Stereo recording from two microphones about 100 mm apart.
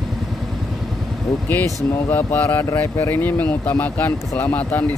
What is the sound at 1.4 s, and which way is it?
Speech, 20° left (ahead or behind).